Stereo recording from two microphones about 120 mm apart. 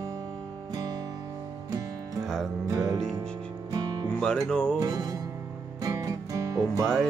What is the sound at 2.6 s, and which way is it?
Music, 25° right (ahead or behind).